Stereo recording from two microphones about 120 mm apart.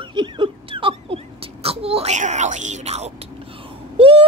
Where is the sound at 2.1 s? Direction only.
80° right; by 3.1 s 60° right (ahead or behind).